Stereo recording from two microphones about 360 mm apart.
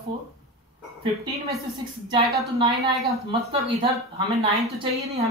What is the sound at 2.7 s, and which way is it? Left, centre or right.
Speech, centre.